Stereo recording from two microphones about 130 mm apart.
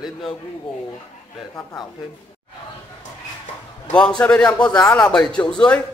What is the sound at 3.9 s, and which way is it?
A man's voice, 10° left (ahead or behind).